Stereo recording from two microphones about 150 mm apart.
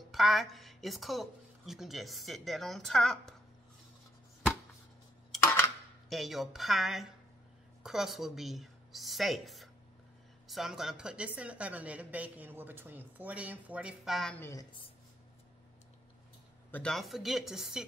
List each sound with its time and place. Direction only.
0.1 s a woman's voice: centre (ahead or behind)
5.4 s a sound: 15° left (ahead or behind)
6.0 s a woman's voice: centre (ahead or behind)
14.3 s a woman's voice: 15° left (ahead or behind)
16.7 s a woman's voice: 5° left (ahead or behind)